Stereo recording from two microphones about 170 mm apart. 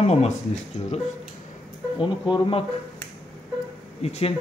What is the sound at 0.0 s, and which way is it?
Speech, 40° left (ahead or behind).